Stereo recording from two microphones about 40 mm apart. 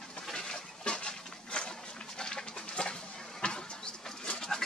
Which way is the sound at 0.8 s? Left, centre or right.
Left.